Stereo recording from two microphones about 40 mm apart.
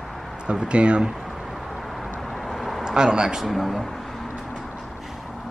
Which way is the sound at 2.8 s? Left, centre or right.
Centre.